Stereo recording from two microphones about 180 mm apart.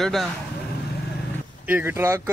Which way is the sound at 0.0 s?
Centre (ahead or behind).